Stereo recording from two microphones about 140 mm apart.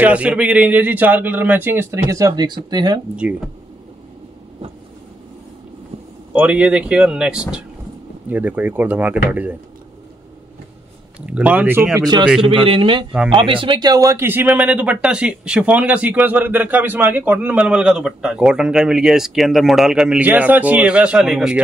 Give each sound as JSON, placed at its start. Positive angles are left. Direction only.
{"t": 0.0, "sound": "speech", "side_deg": -10}
{"t": 6.3, "sound": "speech", "side_deg": -10}
{"t": 11.1, "sound": "speech", "side_deg": -10}
{"t": 12.0, "sound": "a man's voice", "side_deg": -30}